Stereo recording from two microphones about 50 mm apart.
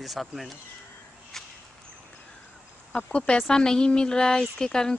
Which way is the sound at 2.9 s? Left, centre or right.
Centre.